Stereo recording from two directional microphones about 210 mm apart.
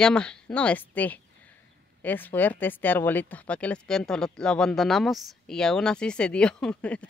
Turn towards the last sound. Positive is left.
turn(degrees=5)  # may be behind; listen again after turning